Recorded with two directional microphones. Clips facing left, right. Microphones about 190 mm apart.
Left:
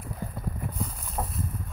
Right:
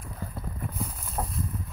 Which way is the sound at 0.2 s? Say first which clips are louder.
Left 1 dB; 15° left (ahead or behind).